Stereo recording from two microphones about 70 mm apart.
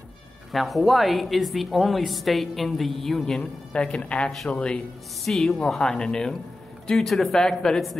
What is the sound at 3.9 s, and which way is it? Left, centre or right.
Speech, centre.